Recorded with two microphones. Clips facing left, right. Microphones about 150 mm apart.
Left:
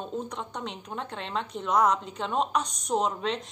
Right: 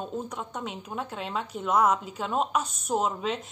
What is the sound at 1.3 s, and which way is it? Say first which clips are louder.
A woman's voice: even; 5° right (ahead or behind).